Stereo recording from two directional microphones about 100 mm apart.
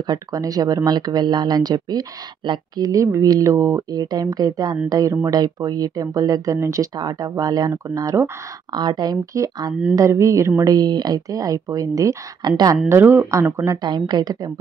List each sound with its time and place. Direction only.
0.0 s speech: 35° right (ahead or behind)
2.8 s speech: 35° right (ahead or behind)
8.7 s speech: 45° right (ahead or behind)
12.8 s speech: 20° right (ahead or behind)
13.8 s a woman's voice: 45° right (ahead or behind)